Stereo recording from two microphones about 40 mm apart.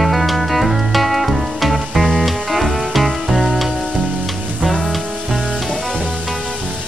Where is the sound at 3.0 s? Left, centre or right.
Centre.